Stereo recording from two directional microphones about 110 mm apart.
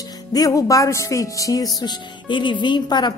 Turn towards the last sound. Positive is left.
turn(degrees=45)  # may be behind; listen again after turning